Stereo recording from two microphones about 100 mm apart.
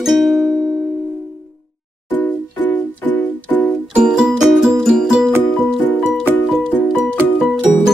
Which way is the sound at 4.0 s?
5° right (ahead or behind).